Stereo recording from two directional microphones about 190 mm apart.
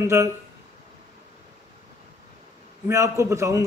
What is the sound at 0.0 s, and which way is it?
Speech, 15° right (ahead or behind).